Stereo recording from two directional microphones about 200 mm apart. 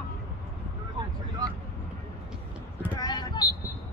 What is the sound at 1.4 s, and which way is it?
Vehicle, 20° right (ahead or behind).